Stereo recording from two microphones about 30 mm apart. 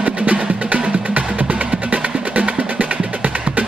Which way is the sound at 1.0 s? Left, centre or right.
Right.